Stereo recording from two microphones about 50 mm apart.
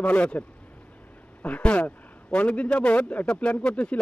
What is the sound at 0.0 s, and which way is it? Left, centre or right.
Speech, left.